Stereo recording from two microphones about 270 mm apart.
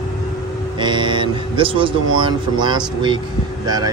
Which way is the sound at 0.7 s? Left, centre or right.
Centre.